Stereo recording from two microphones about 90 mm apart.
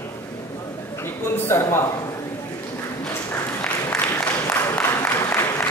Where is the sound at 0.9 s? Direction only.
30° left (ahead or behind).